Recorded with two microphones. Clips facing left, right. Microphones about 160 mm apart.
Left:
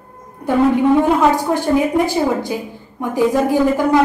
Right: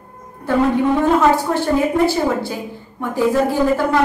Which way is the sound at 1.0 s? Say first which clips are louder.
Even; 15° left (ahead or behind).